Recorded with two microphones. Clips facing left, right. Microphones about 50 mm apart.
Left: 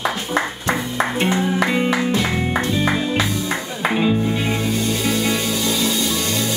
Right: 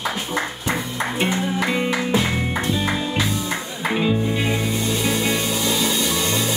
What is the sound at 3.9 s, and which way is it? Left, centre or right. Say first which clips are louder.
Music: left 2 dB; centre.